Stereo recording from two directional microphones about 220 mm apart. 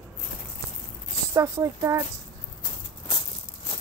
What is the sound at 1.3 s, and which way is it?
Speech, 15° right (ahead or behind).